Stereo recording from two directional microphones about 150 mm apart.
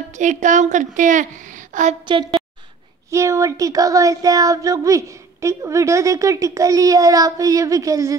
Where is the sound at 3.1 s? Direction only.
20° right (ahead or behind).